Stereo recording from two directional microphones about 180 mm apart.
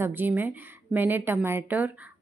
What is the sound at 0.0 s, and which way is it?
Speech, 10° right (ahead or behind).